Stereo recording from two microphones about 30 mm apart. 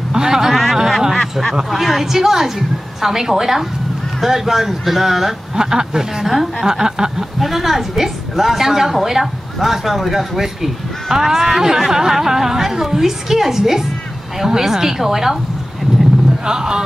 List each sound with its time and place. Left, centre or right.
0.1 s a sound: centre
0.5 s a sound: centre
1.7 s a woman's voice: centre
5.6 s speech: right
6.2 s speech: centre
6.6 s speech: right
7.3 s speech: centre
16.4 s speech: right